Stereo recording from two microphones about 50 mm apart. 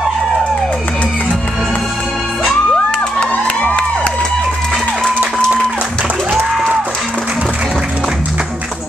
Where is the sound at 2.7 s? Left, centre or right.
Centre.